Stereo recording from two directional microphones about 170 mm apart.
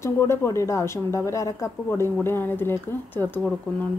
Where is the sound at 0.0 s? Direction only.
15° left (ahead or behind).